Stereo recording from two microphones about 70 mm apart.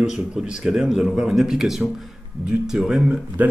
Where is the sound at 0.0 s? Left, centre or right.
Centre.